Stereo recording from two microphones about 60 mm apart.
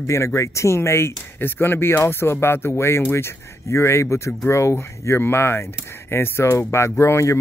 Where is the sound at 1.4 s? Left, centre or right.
Left.